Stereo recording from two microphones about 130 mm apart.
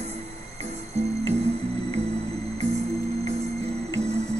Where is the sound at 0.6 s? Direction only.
55° right (ahead or behind).